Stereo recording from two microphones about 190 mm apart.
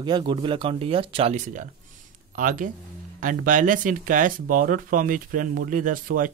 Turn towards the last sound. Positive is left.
turn(degrees=-45)  # may be behind; listen again after turning